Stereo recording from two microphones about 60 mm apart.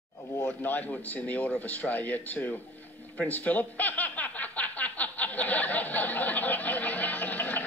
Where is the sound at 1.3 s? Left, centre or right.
Left.